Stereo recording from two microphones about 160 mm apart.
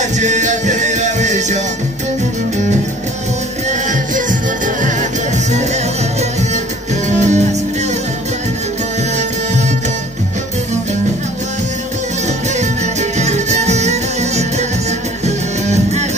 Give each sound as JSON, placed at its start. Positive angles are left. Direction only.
{"t": 0.0, "sound": "music", "side_deg": -50}
{"t": 7.1, "sound": "music", "side_deg": -45}
{"t": 13.2, "sound": "music", "side_deg": -45}